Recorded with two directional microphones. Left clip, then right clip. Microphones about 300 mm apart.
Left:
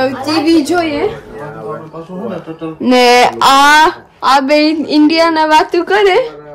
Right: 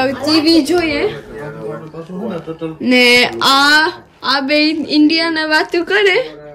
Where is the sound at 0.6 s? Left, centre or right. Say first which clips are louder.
Left 1 dB; centre.